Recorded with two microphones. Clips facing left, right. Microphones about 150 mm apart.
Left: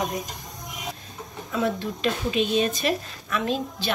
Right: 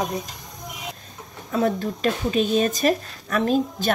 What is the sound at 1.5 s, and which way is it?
Speech, 45° right (ahead or behind).